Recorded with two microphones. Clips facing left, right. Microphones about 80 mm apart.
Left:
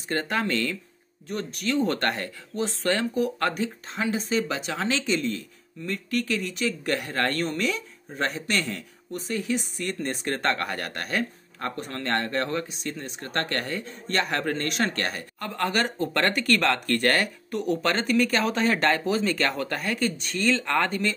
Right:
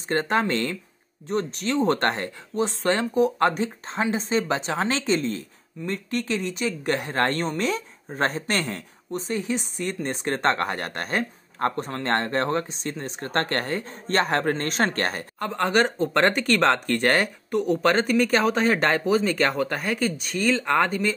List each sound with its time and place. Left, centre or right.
0.1 s speech: right
9.1 s speech: right